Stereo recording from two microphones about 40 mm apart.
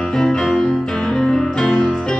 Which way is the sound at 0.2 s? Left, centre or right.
Centre.